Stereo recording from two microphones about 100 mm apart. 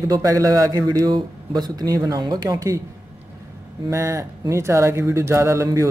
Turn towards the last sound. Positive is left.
turn(degrees=-30)  # may be behind; listen again after turning